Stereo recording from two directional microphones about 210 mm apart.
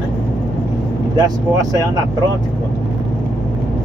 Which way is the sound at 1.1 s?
20° right (ahead or behind).